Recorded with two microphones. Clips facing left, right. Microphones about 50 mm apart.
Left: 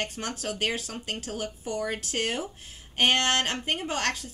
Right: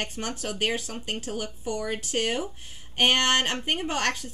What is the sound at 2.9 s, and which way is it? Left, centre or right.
Speech, centre.